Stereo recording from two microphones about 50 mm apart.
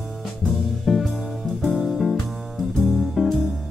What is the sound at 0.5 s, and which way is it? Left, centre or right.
Music, centre.